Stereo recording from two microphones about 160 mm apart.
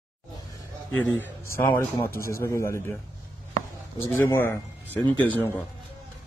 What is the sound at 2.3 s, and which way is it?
Speech, 15° left (ahead or behind).